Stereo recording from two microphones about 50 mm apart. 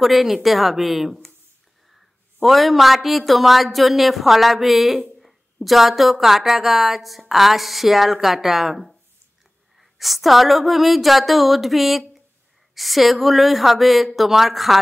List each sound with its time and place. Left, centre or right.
0.0 s speech: centre